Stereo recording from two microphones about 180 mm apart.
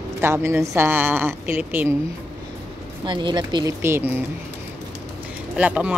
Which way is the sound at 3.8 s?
15° right (ahead or behind).